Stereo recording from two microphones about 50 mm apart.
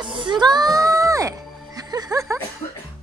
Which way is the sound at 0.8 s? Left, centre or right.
Right.